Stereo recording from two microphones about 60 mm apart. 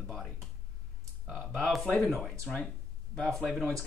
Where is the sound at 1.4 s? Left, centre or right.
Centre.